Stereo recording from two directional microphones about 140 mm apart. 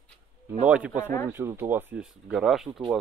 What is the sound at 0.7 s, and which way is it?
Speech, 10° right (ahead or behind).